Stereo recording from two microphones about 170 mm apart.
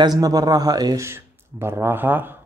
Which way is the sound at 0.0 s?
20° right (ahead or behind).